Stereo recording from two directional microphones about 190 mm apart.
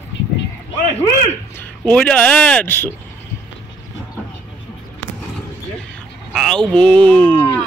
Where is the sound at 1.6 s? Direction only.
5° left (ahead or behind).